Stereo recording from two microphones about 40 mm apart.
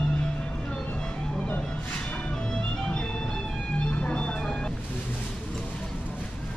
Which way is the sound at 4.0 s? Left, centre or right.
Left.